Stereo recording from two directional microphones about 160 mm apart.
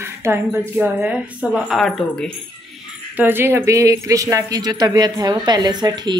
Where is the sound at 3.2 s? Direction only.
15° right (ahead or behind).